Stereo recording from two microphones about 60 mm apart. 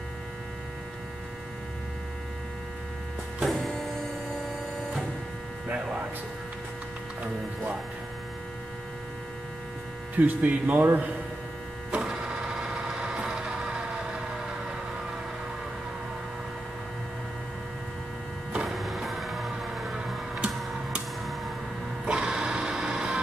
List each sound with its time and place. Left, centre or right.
10.1 s speech: right
11.9 s printer: centre
18.7 s vehicle: centre
20.1 s a sound: centre
22.0 s music: centre